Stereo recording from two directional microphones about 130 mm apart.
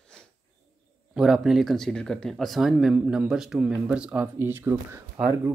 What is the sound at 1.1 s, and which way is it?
Speech, 5° right (ahead or behind).